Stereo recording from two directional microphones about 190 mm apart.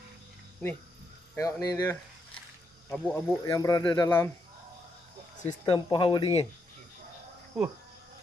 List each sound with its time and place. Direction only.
0.6 s speech: 5° left (ahead or behind)
5.7 s speech: 25° left (ahead or behind)
7.5 s speech: centre (ahead or behind)